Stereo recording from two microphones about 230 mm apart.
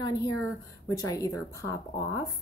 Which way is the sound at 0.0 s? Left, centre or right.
Centre.